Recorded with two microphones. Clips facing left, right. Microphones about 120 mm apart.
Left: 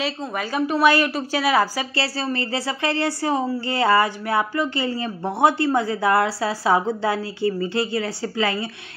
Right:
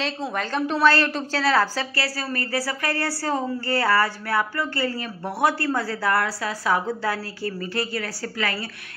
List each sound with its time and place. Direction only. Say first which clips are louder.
0.4 s a woman's voice: left 2 dB; 10° left (ahead or behind)
2.0 s speech: left 7 dB; 25° left (ahead or behind)